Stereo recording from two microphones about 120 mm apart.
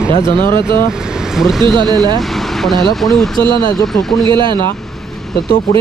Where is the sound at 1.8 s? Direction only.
35° right (ahead or behind).